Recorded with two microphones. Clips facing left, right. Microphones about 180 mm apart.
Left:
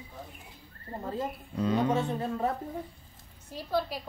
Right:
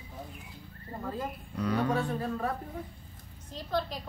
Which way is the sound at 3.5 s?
10° left (ahead or behind).